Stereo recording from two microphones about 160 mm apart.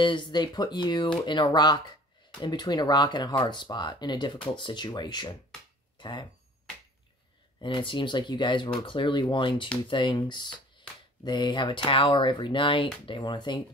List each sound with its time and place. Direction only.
0.0 s speech: 30° left (ahead or behind)
5.9 s a sound: 30° left (ahead or behind)
7.6 s speech: 30° left (ahead or behind)